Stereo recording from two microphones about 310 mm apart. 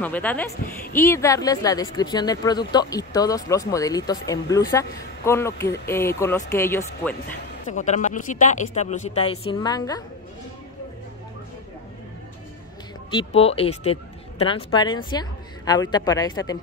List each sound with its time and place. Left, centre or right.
0.0 s speech: centre
7.6 s speech: left
13.1 s speech: centre